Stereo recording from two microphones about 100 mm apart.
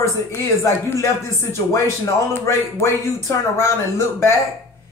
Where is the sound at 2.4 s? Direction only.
25° left (ahead or behind).